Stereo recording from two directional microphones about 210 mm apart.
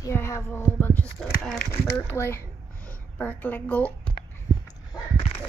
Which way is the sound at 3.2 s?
10° left (ahead or behind).